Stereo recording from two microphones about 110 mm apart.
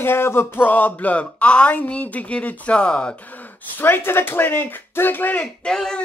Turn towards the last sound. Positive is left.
turn(degrees=5)  # may be behind; listen again after turning